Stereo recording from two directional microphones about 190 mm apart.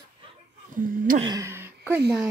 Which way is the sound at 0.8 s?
45° right (ahead or behind).